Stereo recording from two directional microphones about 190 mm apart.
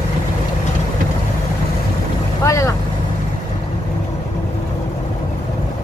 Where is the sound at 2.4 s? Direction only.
15° left (ahead or behind).